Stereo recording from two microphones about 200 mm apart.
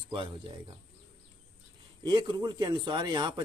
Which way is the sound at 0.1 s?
25° right (ahead or behind).